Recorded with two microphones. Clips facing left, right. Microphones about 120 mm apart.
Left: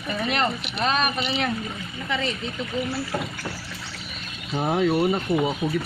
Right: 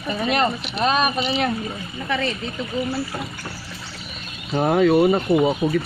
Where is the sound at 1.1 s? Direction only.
35° right (ahead or behind).